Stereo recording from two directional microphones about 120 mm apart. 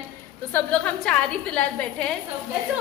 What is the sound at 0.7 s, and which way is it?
A woman's voice, 10° left (ahead or behind).